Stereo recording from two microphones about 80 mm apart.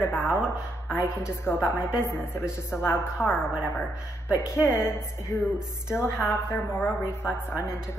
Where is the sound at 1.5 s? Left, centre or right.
Left.